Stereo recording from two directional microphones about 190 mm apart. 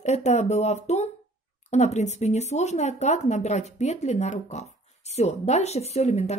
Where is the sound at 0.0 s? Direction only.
35° left (ahead or behind).